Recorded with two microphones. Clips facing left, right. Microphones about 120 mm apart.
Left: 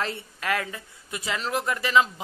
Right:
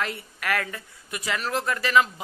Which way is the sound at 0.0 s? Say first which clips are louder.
Even; 25° left (ahead or behind).